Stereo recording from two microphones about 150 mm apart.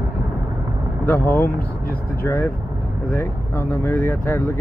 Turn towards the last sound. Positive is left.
turn(degrees=15)  # may be behind; listen again after turning